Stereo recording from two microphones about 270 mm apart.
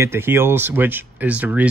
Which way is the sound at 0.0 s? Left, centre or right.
Centre.